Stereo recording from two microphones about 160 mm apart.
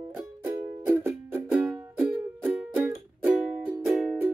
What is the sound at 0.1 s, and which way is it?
Music, 15° right (ahead or behind).